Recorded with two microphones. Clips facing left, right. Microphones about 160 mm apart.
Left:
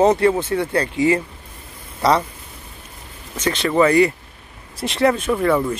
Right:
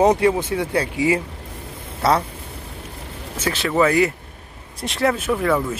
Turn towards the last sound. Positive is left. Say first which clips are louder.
# left 2 dB
turn(degrees=0)  # may be behind; listen again after turning